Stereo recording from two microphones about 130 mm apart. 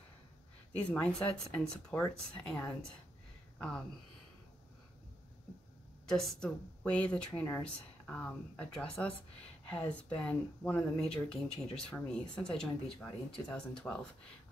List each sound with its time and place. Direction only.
0.7 s speech: 10° left (ahead or behind)
6.0 s speech: 5° left (ahead or behind)